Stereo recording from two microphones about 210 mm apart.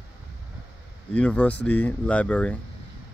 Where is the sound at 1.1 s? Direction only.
5° left (ahead or behind).